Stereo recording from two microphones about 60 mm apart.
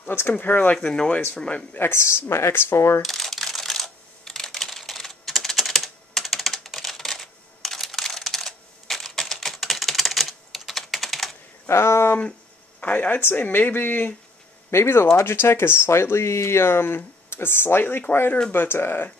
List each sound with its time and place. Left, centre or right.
0.1 s speech: left
0.7 s speech: centre
1.8 s speech: left
3.0 s typing: centre
11.6 s speech: left
12.8 s speech: left